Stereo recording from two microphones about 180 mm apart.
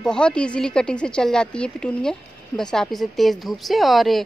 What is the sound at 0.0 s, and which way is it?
A woman's voice, 5° left (ahead or behind).